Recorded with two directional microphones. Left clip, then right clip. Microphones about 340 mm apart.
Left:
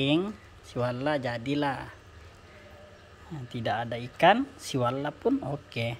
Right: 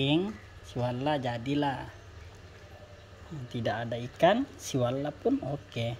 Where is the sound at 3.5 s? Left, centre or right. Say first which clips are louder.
Left 2 dB; centre.